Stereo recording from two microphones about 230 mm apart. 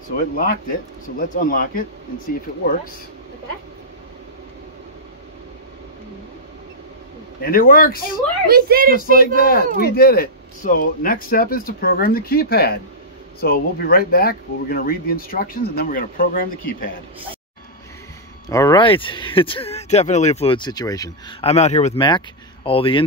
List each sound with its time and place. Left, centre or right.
0.1 s speech: left
7.4 s speech: left
8.5 s a woman's voice: right
9.2 s speech: left
18.5 s speech: centre